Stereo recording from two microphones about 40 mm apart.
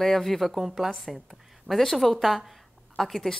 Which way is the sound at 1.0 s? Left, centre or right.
Centre.